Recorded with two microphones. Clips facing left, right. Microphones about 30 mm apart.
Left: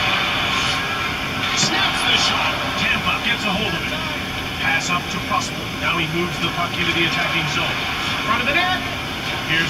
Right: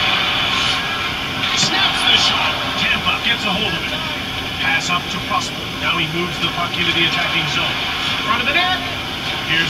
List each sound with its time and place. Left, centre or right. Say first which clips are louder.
0.0 s vehicle: right 2 dB; right
4.6 s speech: right 2 dB; centre
6.8 s speech: right 3 dB; centre